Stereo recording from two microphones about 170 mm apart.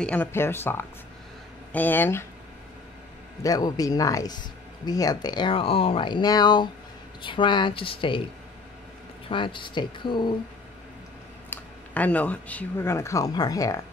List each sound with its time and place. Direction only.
0.0 s speech: 10° left (ahead or behind)
3.4 s speech: 20° left (ahead or behind)
9.3 s speech: 30° left (ahead or behind)
11.5 s speech: 10° left (ahead or behind)